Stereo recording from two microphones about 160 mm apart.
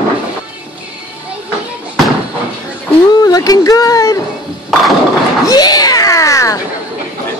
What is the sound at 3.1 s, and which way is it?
Speech, 25° left (ahead or behind).